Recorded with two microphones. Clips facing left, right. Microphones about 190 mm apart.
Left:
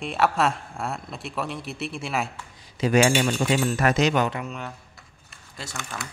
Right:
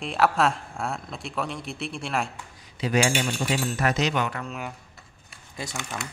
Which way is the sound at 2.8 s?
50° left (ahead or behind).